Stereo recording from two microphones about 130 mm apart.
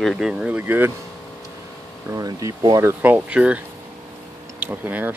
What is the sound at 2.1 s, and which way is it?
Speech, 25° right (ahead or behind).